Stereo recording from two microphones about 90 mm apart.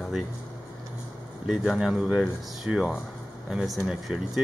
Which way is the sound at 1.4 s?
5° right (ahead or behind).